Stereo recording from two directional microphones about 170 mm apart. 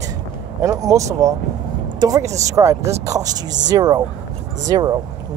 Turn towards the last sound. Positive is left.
turn(degrees=-25)  # may be behind; listen again after turning